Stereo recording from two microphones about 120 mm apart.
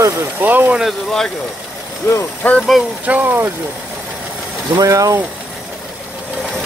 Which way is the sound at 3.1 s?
15° right (ahead or behind).